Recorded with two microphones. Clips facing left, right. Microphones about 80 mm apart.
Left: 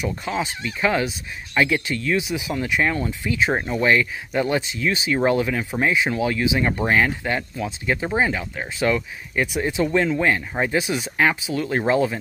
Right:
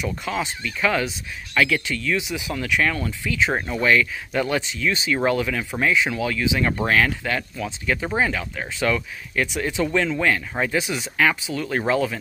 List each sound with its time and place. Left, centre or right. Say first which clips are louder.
0.0 s speech: left 1 dB; centre